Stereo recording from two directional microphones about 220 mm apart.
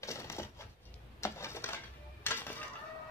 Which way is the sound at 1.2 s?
10° left (ahead or behind).